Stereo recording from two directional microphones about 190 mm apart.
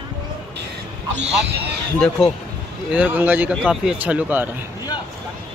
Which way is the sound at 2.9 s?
5° right (ahead or behind).